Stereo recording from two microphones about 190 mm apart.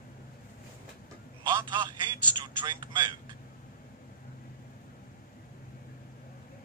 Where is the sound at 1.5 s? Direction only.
25° right (ahead or behind).